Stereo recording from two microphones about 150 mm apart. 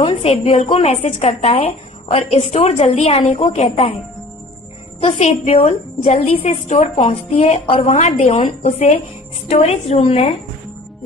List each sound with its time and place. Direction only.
0.0 s a woman's voice: 40° left (ahead or behind)
5.0 s a woman's voice: 45° left (ahead or behind)